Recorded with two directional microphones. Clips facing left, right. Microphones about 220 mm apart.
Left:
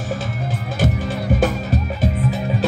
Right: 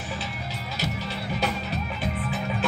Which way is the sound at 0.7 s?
50° left (ahead or behind).